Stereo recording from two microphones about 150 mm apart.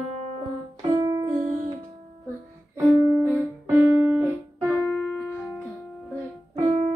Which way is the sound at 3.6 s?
15° right (ahead or behind).